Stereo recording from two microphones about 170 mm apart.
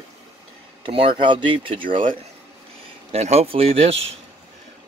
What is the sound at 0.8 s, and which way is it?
Speech, 30° right (ahead or behind).